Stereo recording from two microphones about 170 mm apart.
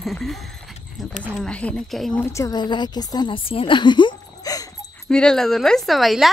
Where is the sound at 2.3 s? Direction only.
20° left (ahead or behind).